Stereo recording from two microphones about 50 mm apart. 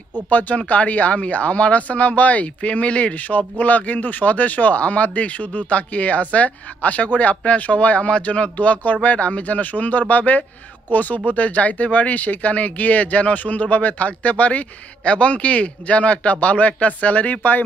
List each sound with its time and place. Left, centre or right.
0.3 s speech: left